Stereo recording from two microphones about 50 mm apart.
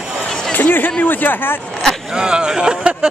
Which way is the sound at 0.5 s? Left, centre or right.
Left.